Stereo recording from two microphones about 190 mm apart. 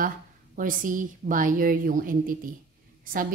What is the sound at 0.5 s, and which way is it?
A woman's voice, 45° right (ahead or behind).